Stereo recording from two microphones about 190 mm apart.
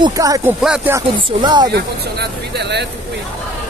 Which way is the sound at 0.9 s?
20° right (ahead or behind).